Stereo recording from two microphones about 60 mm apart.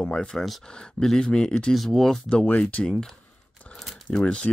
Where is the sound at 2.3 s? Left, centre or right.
Centre.